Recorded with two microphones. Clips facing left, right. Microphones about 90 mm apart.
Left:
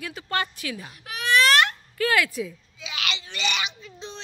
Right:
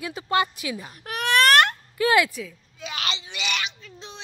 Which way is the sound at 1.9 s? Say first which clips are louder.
Right 3 dB; 20° right (ahead or behind).